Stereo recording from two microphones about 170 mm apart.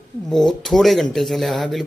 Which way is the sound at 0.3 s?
5° left (ahead or behind).